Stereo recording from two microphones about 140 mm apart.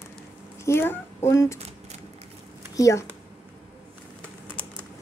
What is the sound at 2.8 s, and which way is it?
Speech, 20° left (ahead or behind).